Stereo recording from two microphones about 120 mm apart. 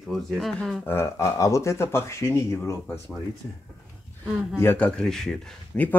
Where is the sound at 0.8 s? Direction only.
20° left (ahead or behind).